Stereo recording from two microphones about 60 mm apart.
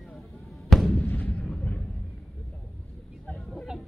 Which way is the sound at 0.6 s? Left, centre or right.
Centre.